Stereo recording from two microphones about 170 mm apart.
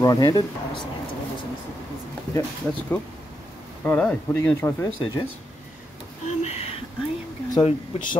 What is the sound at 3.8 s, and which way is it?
Speech, 10° left (ahead or behind).